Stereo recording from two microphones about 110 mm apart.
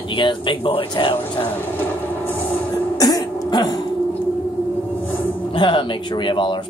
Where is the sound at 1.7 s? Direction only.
15° left (ahead or behind).